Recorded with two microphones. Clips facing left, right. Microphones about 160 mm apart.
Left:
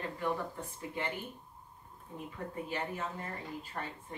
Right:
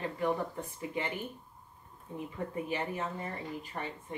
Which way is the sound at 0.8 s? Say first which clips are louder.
Right 3 dB; 15° right (ahead or behind).